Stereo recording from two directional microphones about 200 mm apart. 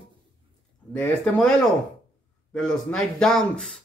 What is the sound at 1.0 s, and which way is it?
Speech, 5° left (ahead or behind).